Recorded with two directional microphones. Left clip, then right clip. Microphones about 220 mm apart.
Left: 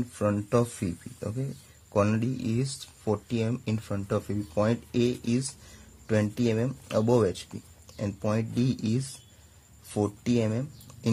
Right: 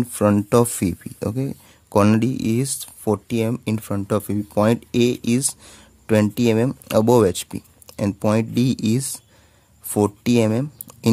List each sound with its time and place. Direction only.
0.0 s speech: 45° right (ahead or behind)